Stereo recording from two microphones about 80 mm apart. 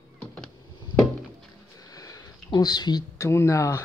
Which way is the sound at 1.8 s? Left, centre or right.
Left.